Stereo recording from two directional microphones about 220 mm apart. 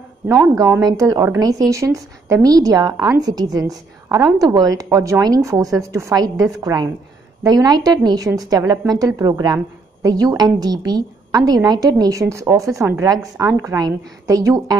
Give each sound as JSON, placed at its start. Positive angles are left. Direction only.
{"t": 0.6, "sound": "a woman's voice", "side_deg": -15}